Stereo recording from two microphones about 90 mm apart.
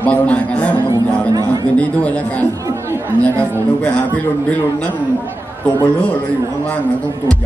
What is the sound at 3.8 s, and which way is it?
Speech, 15° left (ahead or behind).